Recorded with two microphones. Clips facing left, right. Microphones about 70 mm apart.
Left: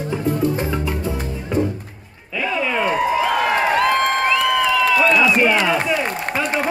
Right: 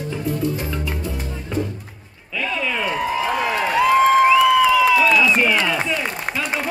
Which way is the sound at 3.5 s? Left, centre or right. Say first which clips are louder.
Left 3 dB; left.